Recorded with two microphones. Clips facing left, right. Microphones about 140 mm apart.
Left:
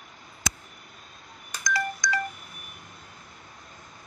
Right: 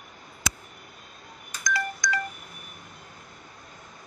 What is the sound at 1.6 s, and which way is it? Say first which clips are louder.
Telephone dialing: even; 30° left (ahead or behind).